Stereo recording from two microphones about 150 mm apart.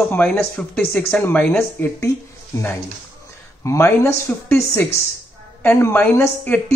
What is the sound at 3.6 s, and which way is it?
Speech, 15° left (ahead or behind).